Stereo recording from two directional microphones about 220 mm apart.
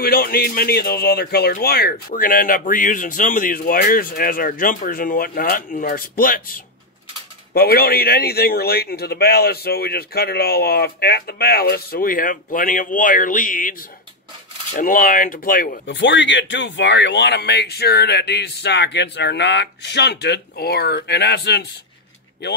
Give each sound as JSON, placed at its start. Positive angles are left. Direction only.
{"t": 0.0, "sound": "a man's voice", "side_deg": 45}
{"t": 15.9, "sound": "a man's voice", "side_deg": 55}